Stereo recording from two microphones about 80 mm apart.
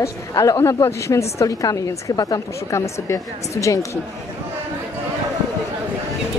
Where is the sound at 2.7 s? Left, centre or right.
Left.